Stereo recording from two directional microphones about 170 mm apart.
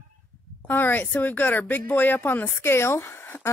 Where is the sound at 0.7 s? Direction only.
10° left (ahead or behind).